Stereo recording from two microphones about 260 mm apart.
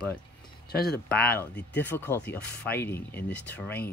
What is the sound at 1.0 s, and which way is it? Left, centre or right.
Speech, centre.